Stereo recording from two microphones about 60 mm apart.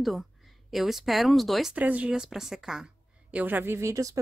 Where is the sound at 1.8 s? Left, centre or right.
Right.